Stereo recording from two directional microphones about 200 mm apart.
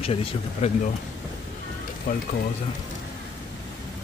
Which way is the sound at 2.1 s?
45° left (ahead or behind).